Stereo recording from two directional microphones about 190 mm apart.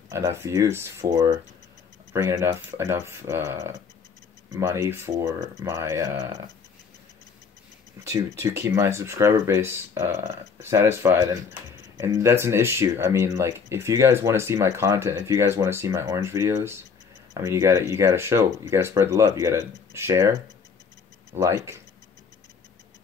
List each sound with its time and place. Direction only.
0.1 s speech: 15° right (ahead or behind)
8.1 s speech: 15° right (ahead or behind)